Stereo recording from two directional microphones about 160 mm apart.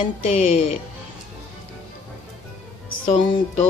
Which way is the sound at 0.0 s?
40° left (ahead or behind).